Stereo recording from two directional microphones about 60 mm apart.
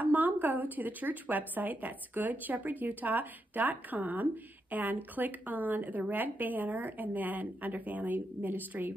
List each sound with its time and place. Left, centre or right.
0.0 s a woman's voice: right